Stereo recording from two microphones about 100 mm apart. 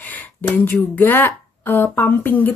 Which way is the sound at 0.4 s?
20° left (ahead or behind).